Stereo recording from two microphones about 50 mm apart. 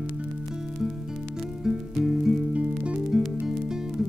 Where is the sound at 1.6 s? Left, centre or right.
Centre.